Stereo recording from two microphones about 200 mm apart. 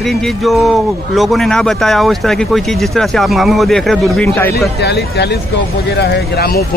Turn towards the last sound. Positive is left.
turn(degrees=55)  # may be behind; listen again after turning